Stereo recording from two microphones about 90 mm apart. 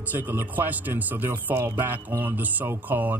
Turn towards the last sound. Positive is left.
turn(degrees=-25)  # may be behind; listen again after turning